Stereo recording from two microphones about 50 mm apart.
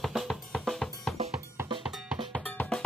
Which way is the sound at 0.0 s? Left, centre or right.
Centre.